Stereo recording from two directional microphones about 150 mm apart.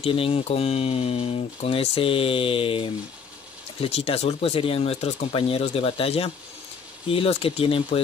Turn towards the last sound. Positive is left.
turn(degrees=40)  # may be behind; listen again after turning